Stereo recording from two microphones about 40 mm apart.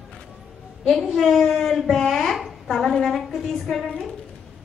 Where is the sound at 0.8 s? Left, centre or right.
Centre.